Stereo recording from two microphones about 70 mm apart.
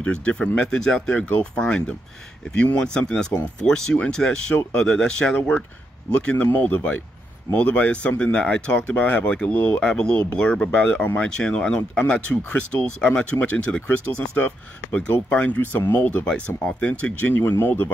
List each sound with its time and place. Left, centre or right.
0.0 s speech: centre
6.2 s speech: left
16.3 s speech: centre
17.3 s speech: left